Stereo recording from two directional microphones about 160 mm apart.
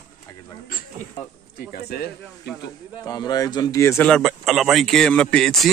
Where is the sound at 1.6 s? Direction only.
75° left (ahead or behind); by 2.7 s 90° left.